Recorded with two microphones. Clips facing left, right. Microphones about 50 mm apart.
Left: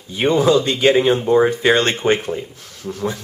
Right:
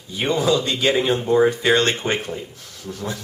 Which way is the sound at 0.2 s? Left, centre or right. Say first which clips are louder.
Left 5 dB; centre.